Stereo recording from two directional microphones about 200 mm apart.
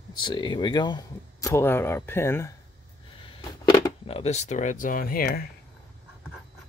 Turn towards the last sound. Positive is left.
turn(degrees=45)  # may be behind; listen again after turning